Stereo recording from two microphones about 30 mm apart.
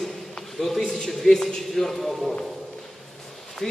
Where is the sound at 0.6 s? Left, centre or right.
Centre.